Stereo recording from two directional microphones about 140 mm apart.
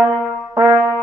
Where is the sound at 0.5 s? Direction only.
25° right (ahead or behind).